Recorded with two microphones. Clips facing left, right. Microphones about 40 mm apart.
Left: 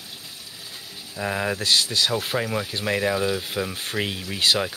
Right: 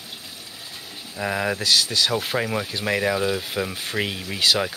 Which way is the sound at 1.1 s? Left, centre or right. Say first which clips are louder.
Right 1 dB; centre.